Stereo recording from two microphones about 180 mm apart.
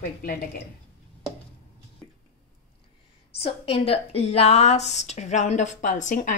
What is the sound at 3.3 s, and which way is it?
A woman's voice, 35° left (ahead or behind).